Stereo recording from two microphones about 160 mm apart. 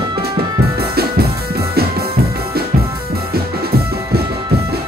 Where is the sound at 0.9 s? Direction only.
75° right (ahead or behind).